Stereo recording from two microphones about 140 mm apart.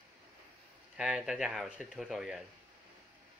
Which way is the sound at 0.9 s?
5° right (ahead or behind).